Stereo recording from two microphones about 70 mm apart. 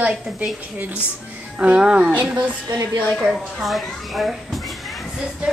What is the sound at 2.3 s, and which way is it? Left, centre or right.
Speech, right.